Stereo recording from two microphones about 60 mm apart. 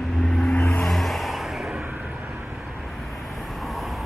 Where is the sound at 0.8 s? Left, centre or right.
Centre.